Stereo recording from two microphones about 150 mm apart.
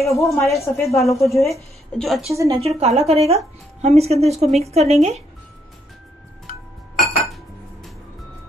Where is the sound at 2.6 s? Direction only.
45° right (ahead or behind).